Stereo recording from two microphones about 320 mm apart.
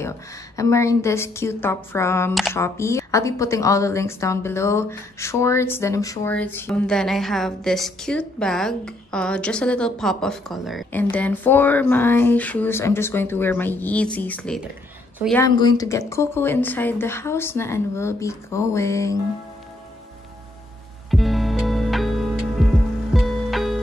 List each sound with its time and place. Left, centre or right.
0.6 s a woman's voice: centre
15.4 s speech: centre
21.1 s music: centre